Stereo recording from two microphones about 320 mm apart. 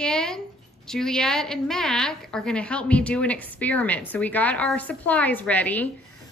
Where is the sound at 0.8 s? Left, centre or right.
Centre.